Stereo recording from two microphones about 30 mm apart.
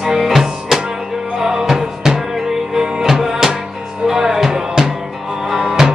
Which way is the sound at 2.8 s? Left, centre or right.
Right.